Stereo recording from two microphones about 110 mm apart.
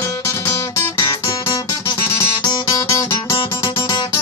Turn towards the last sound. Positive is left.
turn(degrees=30)  # may be behind; listen again after turning